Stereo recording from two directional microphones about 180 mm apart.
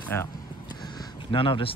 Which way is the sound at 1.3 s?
30° left (ahead or behind).